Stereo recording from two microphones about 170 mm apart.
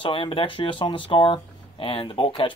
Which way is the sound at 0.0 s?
30° left (ahead or behind).